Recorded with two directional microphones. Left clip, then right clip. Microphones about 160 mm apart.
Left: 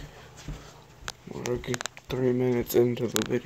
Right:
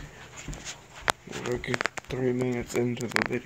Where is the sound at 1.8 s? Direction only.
20° left (ahead or behind).